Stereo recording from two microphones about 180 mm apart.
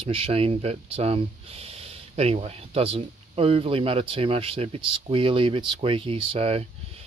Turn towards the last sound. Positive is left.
turn(degrees=-35)  # may be behind; listen again after turning